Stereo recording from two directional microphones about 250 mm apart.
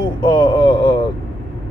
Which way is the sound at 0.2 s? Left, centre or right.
Centre.